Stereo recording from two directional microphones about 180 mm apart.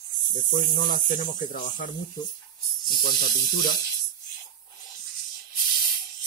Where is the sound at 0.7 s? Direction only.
50° left (ahead or behind).